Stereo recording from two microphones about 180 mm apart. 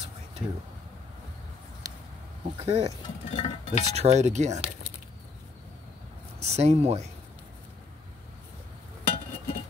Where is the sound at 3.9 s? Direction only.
35° right (ahead or behind).